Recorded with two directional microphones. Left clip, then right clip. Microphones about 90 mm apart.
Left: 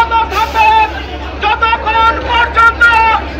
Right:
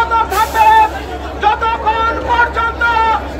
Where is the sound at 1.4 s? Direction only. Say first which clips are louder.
Left 2 dB; 35° right (ahead or behind).